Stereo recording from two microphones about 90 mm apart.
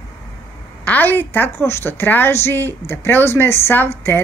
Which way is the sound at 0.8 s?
20° left (ahead or behind).